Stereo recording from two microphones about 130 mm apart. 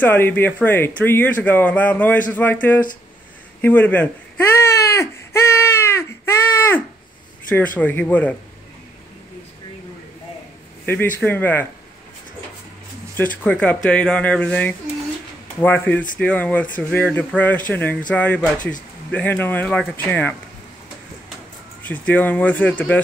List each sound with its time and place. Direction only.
0.0 s speech: 15° left (ahead or behind)
3.6 s baby cry: 10° left (ahead or behind)
7.4 s speech: 15° left (ahead or behind)
11.1 s speech: 15° left (ahead or behind)
13.1 s speech: 10° left (ahead or behind)
21.8 s speech: 10° left (ahead or behind)